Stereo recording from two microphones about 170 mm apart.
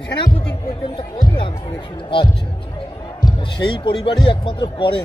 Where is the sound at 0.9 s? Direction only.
30° left (ahead or behind).